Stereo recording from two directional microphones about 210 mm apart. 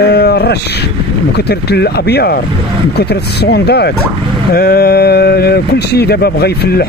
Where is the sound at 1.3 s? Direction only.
50° left (ahead or behind).